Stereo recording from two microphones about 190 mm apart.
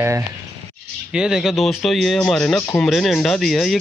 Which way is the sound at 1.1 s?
5° right (ahead or behind).